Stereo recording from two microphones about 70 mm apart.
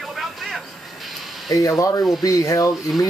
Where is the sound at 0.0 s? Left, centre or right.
Centre.